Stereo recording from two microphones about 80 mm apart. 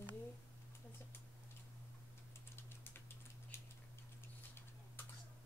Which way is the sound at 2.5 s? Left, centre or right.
Left.